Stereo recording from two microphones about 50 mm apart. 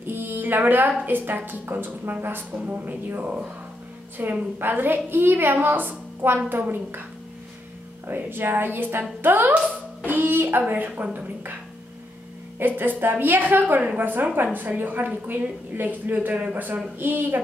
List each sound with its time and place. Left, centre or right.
0.0 s music: right
1.0 s a woman's voice: right
2.5 s a woman's voice: right
4.2 s a woman's voice: right
8.1 s a woman's voice: right
10.0 s music: right
11.0 s a woman's voice: right
12.5 s a woman's voice: right